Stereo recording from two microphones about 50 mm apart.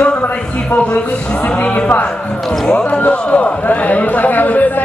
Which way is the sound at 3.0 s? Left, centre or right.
Left.